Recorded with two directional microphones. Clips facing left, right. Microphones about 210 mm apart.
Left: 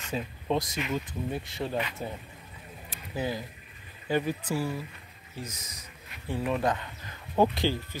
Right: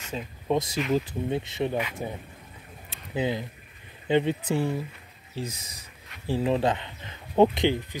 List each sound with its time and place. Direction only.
0.1 s speech: 5° left (ahead or behind)
0.5 s speech: 10° right (ahead or behind)
0.9 s speech: 25° right (ahead or behind)
2.9 s a sound: 20° right (ahead or behind)
4.1 s speech: 25° right (ahead or behind)